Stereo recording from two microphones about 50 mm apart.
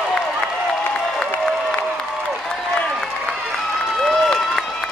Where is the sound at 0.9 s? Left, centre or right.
Centre.